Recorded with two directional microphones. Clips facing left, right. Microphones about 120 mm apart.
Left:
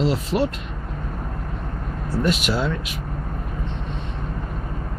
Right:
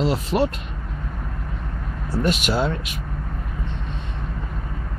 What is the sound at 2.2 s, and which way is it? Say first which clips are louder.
Speech: right 1 dB; 25° right (ahead or behind).